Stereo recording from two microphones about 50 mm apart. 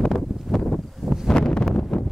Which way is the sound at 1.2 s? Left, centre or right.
Centre.